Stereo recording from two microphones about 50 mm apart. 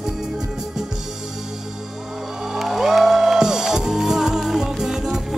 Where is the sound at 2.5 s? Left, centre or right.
Centre.